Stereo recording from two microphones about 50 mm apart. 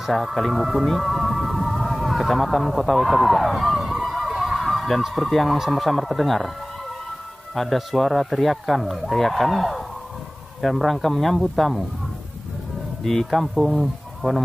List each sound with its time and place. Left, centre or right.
0.0 s speech: centre
0.8 s music: centre
5.0 s speech: centre
7.5 s speech: centre
13.0 s speech: centre